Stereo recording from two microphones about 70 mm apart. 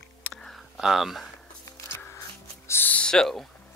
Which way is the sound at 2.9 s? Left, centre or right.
Centre.